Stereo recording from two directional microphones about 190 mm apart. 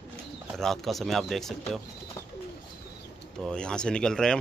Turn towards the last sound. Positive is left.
turn(degrees=5)  # may be behind; listen again after turning